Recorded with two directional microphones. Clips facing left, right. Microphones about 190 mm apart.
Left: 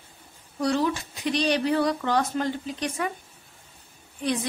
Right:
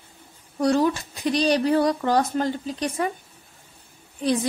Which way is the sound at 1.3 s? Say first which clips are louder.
Right 3 dB; 40° right (ahead or behind).